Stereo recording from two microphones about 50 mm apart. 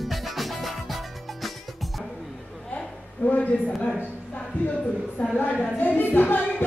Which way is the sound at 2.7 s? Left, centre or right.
Left.